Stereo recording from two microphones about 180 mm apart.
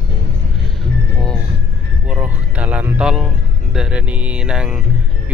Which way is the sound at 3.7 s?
5° right (ahead or behind).